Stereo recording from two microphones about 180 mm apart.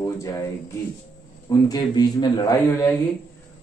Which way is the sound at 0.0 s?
20° left (ahead or behind).